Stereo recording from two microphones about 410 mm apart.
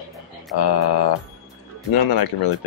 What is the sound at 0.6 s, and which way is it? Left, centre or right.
Mantra, left.